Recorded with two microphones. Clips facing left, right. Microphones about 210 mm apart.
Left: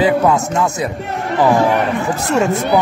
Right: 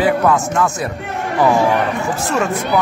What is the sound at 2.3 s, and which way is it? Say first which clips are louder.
Speech: left 4 dB; 20° left (ahead or behind).